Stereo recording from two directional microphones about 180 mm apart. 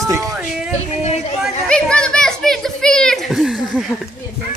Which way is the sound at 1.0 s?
35° left (ahead or behind).